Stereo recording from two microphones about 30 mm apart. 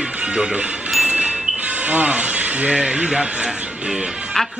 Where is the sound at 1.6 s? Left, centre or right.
Right.